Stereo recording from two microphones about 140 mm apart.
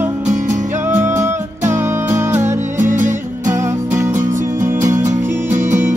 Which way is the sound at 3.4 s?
20° right (ahead or behind).